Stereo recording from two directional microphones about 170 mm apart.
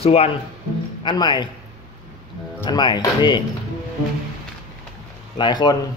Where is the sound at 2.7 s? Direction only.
25° left (ahead or behind).